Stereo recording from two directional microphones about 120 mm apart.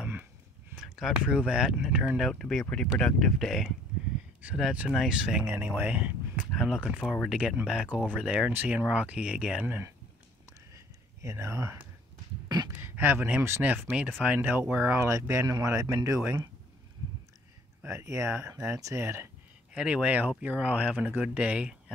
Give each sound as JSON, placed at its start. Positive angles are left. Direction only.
{"t": 0.0, "sound": "a sound", "side_deg": -15}
{"t": 0.7, "sound": "speech", "side_deg": -5}
{"t": 5.4, "sound": "speech", "side_deg": -20}
{"t": 11.1, "sound": "speech", "side_deg": -25}
{"t": 12.8, "sound": "speech", "side_deg": -20}
{"t": 17.8, "sound": "speech", "side_deg": -25}
{"t": 19.7, "sound": "speech", "side_deg": -10}